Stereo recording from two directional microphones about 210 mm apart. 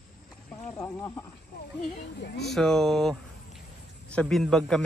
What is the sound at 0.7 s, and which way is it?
Speech, 15° left (ahead or behind).